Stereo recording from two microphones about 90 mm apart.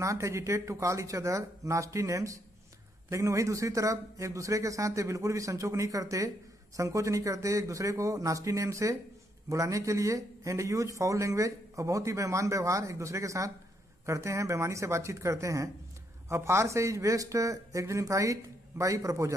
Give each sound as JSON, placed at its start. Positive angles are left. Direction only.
{"t": 0.0, "sound": "speech", "side_deg": -35}